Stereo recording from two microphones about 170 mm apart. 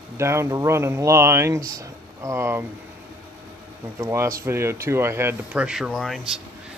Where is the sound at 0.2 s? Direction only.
15° right (ahead or behind).